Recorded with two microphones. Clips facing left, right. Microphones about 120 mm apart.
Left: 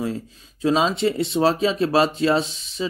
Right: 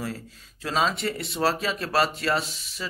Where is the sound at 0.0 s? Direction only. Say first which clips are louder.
Left 7 dB; 20° left (ahead or behind).